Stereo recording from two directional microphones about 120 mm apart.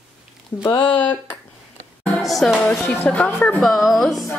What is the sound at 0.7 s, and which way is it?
Speech, 15° left (ahead or behind).